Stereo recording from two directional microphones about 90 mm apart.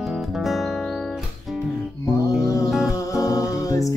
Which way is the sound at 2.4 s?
35° left (ahead or behind).